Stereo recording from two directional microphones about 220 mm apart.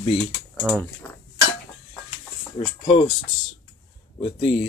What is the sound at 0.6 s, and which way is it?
Speech, 5° right (ahead or behind).